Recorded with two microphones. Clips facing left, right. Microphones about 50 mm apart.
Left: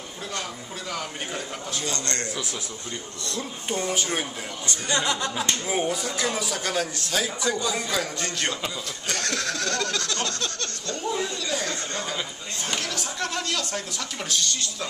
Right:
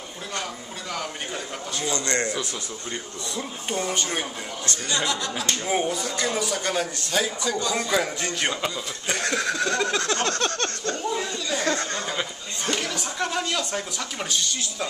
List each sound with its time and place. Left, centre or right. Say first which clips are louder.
0.9 s speech: right 1 dB; centre
1.9 s speech: right 7 dB; centre
3.3 s speech: left 1 dB; centre
4.6 s speech: left 1 dB; left
5.7 s speech: right 4 dB; centre
7.9 s speech: right 3 dB; centre; by 10.3 s right
10.4 s a sound: right 6 dB; right
12.7 s speech: even; centre